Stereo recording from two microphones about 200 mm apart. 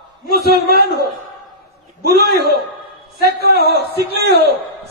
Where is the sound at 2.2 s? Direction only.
55° right (ahead or behind).